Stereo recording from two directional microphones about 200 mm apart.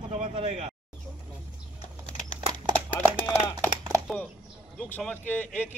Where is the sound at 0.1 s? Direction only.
30° right (ahead or behind).